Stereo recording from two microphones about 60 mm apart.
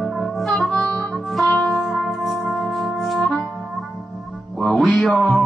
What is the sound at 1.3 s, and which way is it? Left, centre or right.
Music, centre.